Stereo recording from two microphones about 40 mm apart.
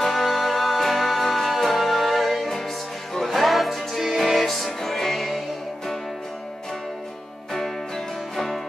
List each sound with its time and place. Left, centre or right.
0.0 s music: centre